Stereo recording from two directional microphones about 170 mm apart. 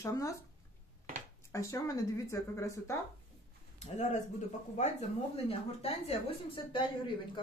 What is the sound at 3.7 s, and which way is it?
A woman's voice, 40° left (ahead or behind).